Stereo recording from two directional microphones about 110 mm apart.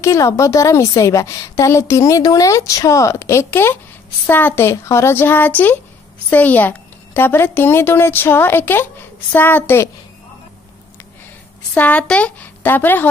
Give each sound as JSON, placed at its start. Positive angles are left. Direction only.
{"t": 0.0, "sound": "a woman's voice", "side_deg": 30}
{"t": 11.7, "sound": "a woman's voice", "side_deg": 15}